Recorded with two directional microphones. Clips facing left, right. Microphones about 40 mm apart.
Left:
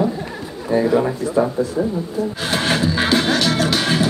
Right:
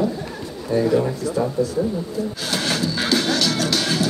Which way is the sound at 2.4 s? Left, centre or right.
Left.